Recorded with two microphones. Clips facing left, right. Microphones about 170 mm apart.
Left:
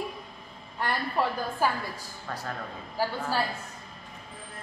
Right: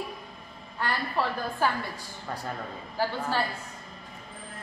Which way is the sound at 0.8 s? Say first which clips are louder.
Left 1 dB; 15° left (ahead or behind).